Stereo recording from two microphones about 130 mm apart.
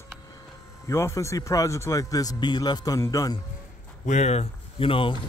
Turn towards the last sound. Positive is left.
turn(degrees=45)  # may be behind; listen again after turning